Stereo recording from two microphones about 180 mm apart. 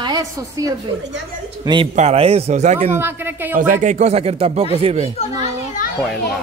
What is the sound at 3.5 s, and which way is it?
Speech, 45° right (ahead or behind).